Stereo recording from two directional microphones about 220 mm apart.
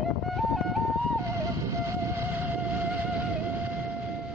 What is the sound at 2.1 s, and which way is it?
Vehicle, 10° right (ahead or behind).